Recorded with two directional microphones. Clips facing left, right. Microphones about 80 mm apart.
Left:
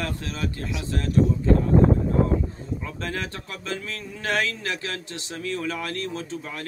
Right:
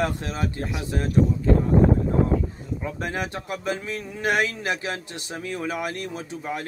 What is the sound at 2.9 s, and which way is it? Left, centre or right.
Speech, centre.